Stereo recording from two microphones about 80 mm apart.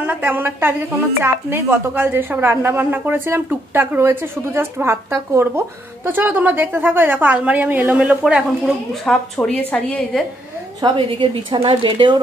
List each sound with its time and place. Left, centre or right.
0.0 s a woman's voice: right
8.1 s speech: centre
9.0 s a woman's voice: centre
11.0 s speech: right